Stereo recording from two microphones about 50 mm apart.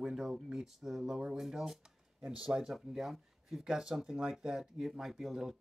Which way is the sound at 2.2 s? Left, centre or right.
Right.